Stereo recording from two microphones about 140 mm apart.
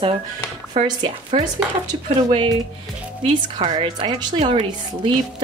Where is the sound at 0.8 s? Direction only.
35° right (ahead or behind).